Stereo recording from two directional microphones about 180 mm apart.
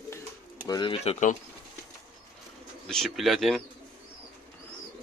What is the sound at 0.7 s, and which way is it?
Speech, 25° left (ahead or behind).